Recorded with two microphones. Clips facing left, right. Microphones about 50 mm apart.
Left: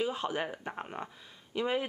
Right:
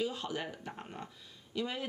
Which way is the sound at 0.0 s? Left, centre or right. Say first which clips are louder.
Left 4 dB; left.